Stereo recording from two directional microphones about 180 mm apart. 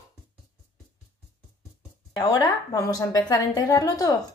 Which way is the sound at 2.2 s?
20° left (ahead or behind).